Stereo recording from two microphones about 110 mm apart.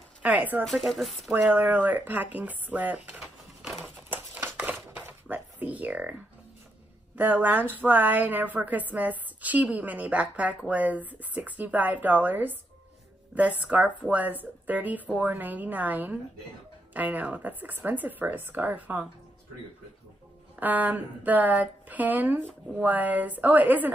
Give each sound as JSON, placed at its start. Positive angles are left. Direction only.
{"t": 0.2, "sound": "speech", "side_deg": -15}
{"t": 0.7, "sound": "speech", "side_deg": 0}
{"t": 1.3, "sound": "speech", "side_deg": -15}
{"t": 3.1, "sound": "a sound", "side_deg": -10}
{"t": 7.2, "sound": "speech", "side_deg": -15}
{"t": 20.5, "sound": "speech", "side_deg": -15}